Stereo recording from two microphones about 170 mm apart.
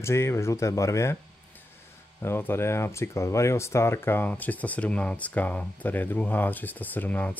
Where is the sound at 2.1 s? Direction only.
15° left (ahead or behind).